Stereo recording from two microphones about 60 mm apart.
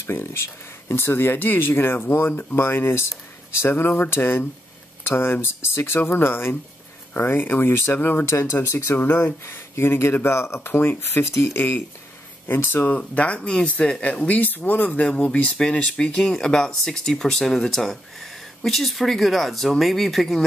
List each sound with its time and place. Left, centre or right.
0.0 s speech: left
3.6 s speech: left
8.9 s speech: left; by 20.4 s centre